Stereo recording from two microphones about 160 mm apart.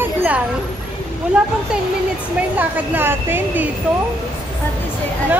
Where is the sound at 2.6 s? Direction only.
15° right (ahead or behind).